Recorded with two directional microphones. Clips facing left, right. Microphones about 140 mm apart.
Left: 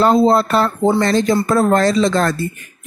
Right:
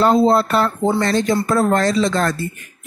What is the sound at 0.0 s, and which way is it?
Speech, 40° left (ahead or behind).